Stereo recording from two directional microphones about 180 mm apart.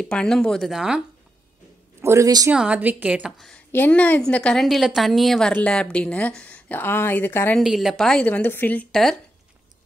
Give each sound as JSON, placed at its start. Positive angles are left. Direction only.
{"t": 0.0, "sound": "a woman's voice", "side_deg": 5}
{"t": 2.0, "sound": "speech", "side_deg": -15}
{"t": 2.5, "sound": "a woman's voice", "side_deg": -5}
{"t": 7.6, "sound": "a woman's voice", "side_deg": 0}